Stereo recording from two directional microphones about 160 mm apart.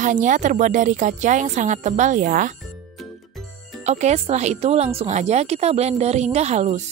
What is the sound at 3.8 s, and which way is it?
Speech, 45° right (ahead or behind).